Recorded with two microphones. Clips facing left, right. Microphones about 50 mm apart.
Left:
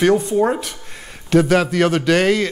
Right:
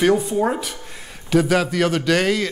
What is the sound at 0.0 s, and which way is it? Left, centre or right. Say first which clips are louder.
Speech: left 2 dB; centre.